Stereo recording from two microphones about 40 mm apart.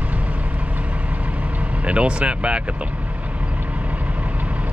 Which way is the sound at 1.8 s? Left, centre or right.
Right.